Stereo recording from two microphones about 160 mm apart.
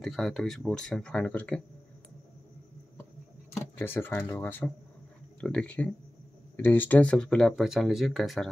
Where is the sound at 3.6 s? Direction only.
15° left (ahead or behind).